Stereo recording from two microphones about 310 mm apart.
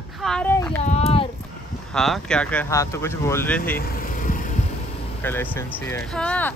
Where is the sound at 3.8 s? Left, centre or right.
Left.